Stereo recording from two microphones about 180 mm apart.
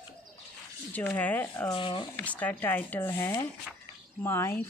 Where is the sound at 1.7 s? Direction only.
25° left (ahead or behind).